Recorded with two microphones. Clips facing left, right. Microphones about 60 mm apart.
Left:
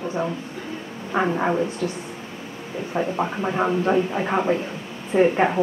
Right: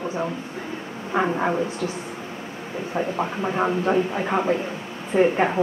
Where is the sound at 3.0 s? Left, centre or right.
Centre.